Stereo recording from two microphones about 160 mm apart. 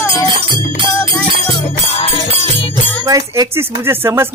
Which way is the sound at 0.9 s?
15° left (ahead or behind).